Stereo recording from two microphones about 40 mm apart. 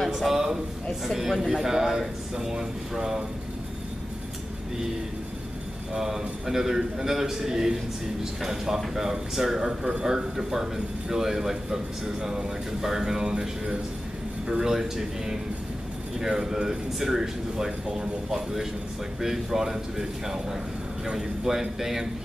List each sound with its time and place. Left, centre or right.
0.2 s a man's voice: centre
5.9 s a man's voice: centre